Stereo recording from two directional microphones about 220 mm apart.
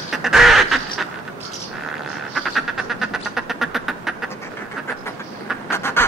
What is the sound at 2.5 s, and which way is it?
Quack, centre (ahead or behind).